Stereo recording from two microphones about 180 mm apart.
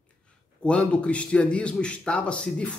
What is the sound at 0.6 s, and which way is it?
Speech, 5° left (ahead or behind).